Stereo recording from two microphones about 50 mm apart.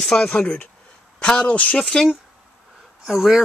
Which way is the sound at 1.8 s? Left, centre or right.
Centre.